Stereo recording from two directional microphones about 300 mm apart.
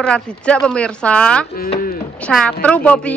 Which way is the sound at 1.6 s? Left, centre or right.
Left.